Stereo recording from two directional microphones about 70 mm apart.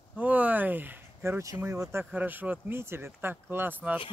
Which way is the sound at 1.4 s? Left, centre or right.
Right.